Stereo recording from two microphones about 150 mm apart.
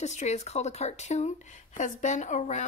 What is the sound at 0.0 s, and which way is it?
Speech, 50° left (ahead or behind).